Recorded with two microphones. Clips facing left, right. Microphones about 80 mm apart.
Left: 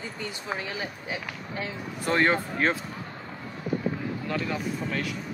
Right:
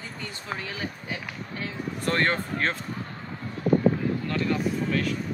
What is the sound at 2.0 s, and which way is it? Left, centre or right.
Speech, centre.